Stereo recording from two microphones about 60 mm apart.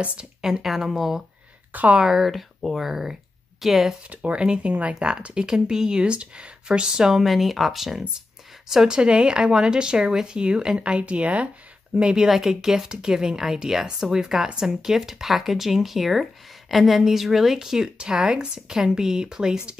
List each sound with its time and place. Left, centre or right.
0.0 s a woman's voice: centre
0.4 s speech: centre
1.7 s speech: right
2.0 s speech: centre
4.1 s speech: right
12.3 s speech: centre